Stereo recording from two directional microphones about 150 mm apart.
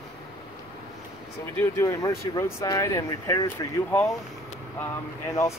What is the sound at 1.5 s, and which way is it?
Speech, 20° left (ahead or behind).